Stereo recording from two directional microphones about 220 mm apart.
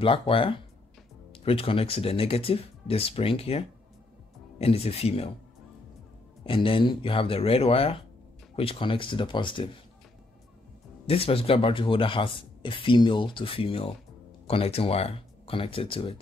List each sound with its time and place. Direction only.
0.0 s speech: 25° left (ahead or behind)
6.4 s speech: 25° left (ahead or behind)
11.1 s speech: 25° left (ahead or behind)